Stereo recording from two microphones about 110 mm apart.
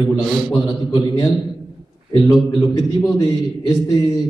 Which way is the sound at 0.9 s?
35° left (ahead or behind).